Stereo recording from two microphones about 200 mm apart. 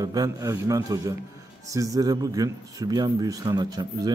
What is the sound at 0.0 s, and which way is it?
A man's voice, 20° right (ahead or behind).